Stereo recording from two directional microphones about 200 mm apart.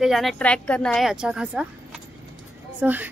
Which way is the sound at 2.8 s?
10° right (ahead or behind).